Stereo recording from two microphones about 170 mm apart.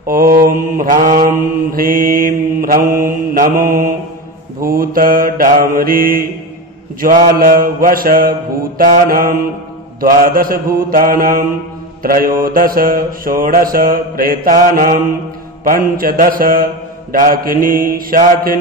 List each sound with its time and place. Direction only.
0.0 s mantra: 60° right (ahead or behind)